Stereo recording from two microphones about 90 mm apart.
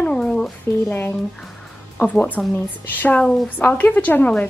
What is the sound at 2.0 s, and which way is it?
A woman's voice, 15° left (ahead or behind).